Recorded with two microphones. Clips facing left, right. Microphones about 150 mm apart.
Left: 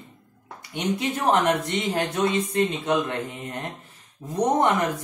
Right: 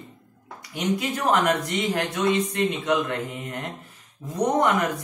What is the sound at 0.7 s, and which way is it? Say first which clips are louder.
Speech: even; 25° left (ahead or behind).